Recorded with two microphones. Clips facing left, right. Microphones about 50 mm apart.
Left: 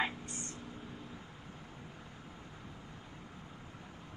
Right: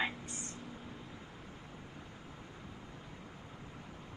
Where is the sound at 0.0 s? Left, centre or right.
Left.